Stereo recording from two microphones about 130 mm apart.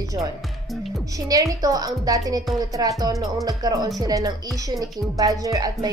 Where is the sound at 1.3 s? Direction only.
25° right (ahead or behind).